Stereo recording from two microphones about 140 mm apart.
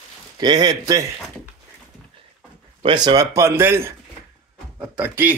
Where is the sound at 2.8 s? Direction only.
30° right (ahead or behind); by 3.9 s 15° right (ahead or behind).